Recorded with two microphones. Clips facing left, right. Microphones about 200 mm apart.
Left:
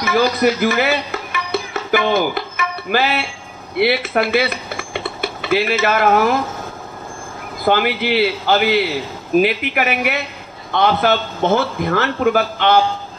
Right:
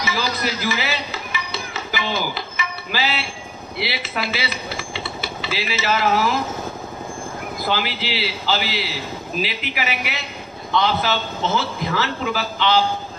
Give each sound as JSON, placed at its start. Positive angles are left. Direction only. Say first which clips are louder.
{"t": 0.0, "sound": "music", "louder": "left 9 dB", "side_deg": 55}
{"t": 3.7, "sound": "speech", "louder": "left 11 dB", "side_deg": 55}
{"t": 7.6, "sound": "a man's voice", "louder": "left 9 dB", "side_deg": 55}